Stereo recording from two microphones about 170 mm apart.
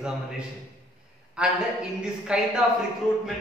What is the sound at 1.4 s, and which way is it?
A man's voice, 5° right (ahead or behind).